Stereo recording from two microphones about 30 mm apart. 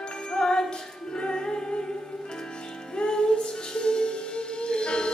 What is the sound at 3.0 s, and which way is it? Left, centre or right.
Music, left.